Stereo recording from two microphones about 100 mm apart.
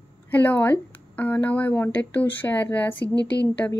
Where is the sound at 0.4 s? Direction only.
15° left (ahead or behind).